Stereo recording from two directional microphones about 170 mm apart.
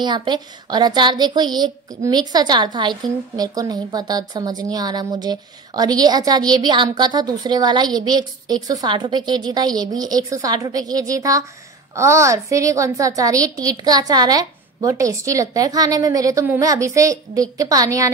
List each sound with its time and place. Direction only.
0.0 s a woman's voice: 25° right (ahead or behind)